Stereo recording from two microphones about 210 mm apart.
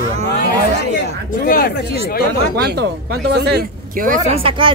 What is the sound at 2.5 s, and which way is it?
Speech, 50° right (ahead or behind).